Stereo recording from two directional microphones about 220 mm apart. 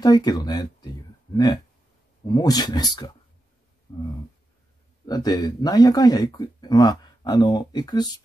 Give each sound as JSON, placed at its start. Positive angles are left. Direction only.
{"t": 0.0, "sound": "speech", "side_deg": 15}